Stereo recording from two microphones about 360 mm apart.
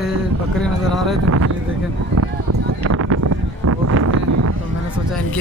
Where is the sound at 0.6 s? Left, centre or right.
Centre.